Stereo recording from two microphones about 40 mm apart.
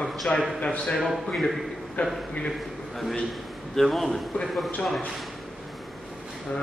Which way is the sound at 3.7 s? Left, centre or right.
Centre.